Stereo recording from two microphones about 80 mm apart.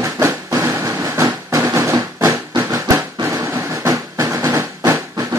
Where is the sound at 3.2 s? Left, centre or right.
Right.